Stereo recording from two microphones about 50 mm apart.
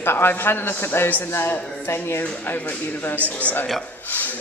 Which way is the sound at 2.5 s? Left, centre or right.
Left.